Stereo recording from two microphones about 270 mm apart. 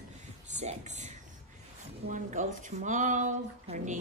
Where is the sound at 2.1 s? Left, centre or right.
Right.